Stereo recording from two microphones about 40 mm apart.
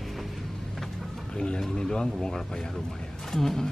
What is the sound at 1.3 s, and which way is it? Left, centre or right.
Speech, left.